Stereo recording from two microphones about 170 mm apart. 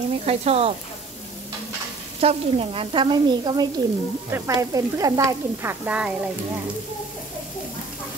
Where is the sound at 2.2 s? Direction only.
35° right (ahead or behind); by 6.1 s 10° right (ahead or behind).